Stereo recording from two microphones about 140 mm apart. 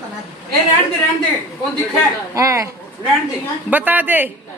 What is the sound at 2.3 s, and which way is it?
Speech, 20° right (ahead or behind).